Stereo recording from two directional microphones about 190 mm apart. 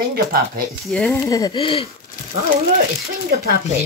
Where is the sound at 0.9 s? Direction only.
5° left (ahead or behind).